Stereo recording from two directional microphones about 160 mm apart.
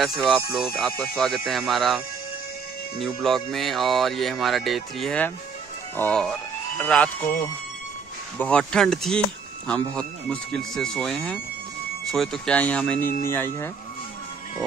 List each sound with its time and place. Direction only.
0.0 s speech: centre (ahead or behind)
8.4 s speech: 5° left (ahead or behind)